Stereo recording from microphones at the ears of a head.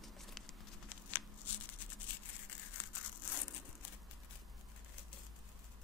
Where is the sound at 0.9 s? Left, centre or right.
Left.